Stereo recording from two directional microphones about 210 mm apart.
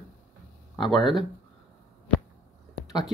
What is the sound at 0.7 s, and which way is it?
Speech, centre (ahead or behind).